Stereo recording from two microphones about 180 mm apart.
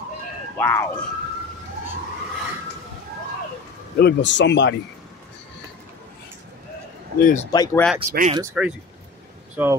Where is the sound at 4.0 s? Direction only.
75° left (ahead or behind).